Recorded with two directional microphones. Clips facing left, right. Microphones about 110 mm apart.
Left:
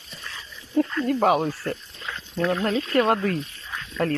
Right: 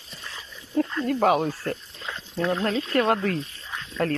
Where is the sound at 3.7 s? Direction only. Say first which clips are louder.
Even; 25° right (ahead or behind).